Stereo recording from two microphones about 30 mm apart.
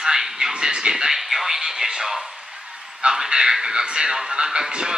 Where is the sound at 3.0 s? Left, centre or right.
Right.